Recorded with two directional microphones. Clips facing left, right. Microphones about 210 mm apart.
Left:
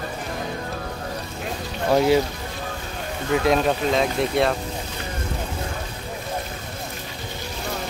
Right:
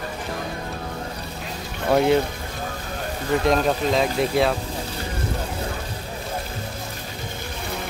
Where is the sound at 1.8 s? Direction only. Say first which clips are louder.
Even; centre (ahead or behind).